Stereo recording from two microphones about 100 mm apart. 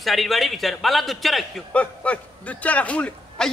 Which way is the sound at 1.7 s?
15° left (ahead or behind).